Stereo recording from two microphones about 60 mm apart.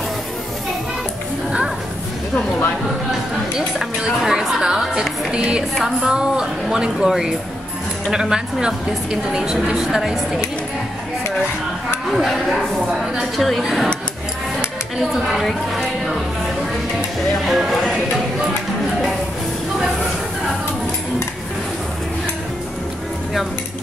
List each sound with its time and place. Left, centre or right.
3.5 s a woman's voice: centre
12.1 s a woman's voice: centre
17.5 s a woman's voice: centre